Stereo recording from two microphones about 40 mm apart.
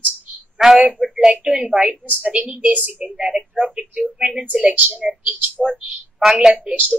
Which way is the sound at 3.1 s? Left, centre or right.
Right.